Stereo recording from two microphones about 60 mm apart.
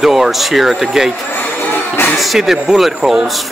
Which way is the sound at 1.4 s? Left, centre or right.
Left.